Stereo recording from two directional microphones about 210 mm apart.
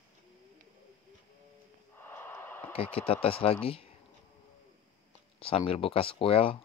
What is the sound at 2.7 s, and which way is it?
Speech, 25° left (ahead or behind).